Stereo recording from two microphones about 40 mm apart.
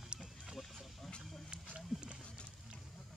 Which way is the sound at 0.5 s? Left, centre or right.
Centre.